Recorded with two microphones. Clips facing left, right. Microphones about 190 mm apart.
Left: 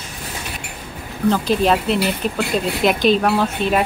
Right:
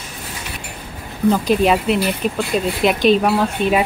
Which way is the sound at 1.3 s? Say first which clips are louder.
Right 2 dB; 5° right (ahead or behind).